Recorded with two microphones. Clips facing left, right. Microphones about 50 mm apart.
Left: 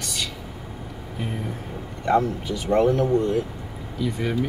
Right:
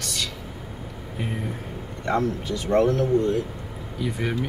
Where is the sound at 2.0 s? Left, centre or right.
Centre.